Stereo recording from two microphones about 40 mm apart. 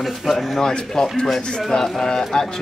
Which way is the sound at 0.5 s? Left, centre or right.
Centre.